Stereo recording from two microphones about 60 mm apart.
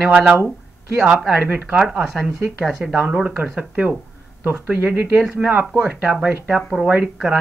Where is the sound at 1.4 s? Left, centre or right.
Right.